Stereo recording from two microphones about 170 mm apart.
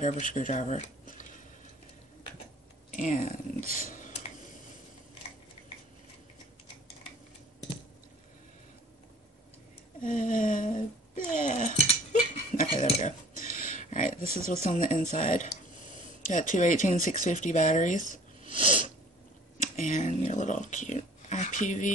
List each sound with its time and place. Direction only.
0.0 s speech: 50° left (ahead or behind)
2.9 s speech: 50° left (ahead or behind)
10.0 s speech: 50° left (ahead or behind)
13.4 s a sound: 50° left (ahead or behind)
14.7 s speech: 50° left (ahead or behind)
18.5 s sneeze: 30° right (ahead or behind)
19.6 s speech: 50° left (ahead or behind)